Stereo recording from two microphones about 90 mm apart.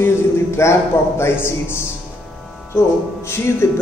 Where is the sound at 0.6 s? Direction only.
30° left (ahead or behind).